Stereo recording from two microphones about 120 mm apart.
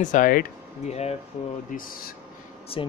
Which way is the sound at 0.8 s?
65° left (ahead or behind).